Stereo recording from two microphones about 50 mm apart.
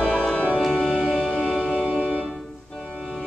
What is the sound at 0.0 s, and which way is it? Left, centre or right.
Music, left.